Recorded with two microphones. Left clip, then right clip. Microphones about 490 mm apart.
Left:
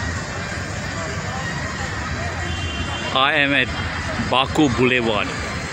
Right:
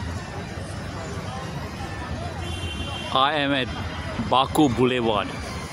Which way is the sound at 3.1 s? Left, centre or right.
Right.